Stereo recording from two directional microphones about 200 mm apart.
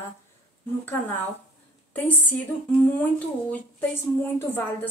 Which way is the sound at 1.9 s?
10° left (ahead or behind).